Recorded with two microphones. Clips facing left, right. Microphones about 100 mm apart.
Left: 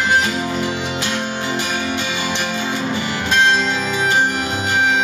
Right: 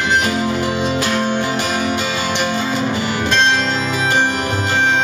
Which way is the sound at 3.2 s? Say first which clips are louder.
Left 1 dB; 10° left (ahead or behind).